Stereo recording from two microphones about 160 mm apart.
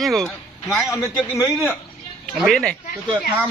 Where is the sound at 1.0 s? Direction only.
20° left (ahead or behind).